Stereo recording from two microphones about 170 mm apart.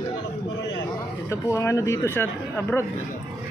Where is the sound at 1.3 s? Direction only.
15° left (ahead or behind).